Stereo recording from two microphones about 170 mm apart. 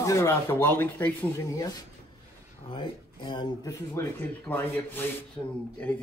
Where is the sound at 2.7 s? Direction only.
25° left (ahead or behind).